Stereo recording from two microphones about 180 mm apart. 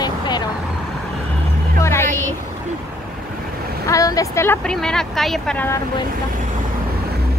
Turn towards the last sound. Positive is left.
turn(degrees=10)  # may be behind; listen again after turning